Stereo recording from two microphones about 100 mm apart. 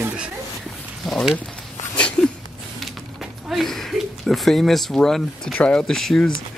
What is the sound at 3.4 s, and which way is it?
Speech, centre (ahead or behind).